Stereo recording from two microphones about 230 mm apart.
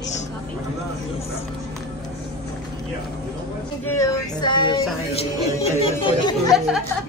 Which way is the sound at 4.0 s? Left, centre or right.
Centre.